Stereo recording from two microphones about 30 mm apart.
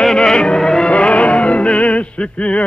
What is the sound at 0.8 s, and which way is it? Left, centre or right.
Music, left.